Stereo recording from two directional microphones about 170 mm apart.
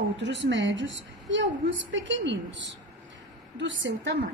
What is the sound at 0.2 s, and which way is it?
A woman's voice, 90° right.